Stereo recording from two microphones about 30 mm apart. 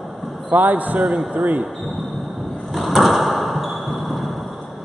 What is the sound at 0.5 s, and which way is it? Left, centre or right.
Speech, right.